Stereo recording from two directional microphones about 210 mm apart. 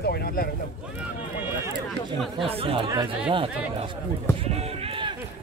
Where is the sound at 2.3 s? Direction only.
25° right (ahead or behind).